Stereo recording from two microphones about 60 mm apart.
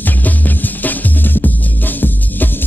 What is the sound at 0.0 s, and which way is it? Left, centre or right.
Music, left.